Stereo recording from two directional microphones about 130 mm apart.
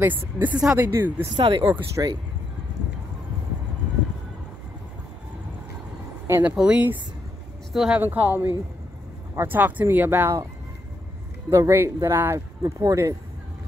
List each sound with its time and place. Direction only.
0.4 s speech: 10° right (ahead or behind)
1.3 s speech: 35° right (ahead or behind)
1.6 s speech: 20° right (ahead or behind)
6.2 s speech: 20° right (ahead or behind)
6.5 s speech: 5° right (ahead or behind)
8.0 s speech: 15° right (ahead or behind)
11.5 s speech: 20° right (ahead or behind)